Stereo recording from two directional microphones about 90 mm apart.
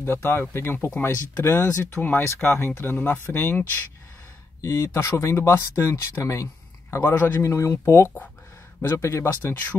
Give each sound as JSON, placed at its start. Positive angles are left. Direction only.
{"t": 0.0, "sound": "speech", "side_deg": 25}
{"t": 4.6, "sound": "speech", "side_deg": 35}